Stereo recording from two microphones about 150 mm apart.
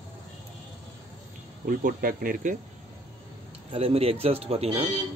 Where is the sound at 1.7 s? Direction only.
65° right (ahead or behind).